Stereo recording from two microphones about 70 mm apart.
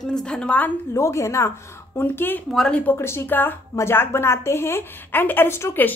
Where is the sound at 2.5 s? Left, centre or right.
Centre.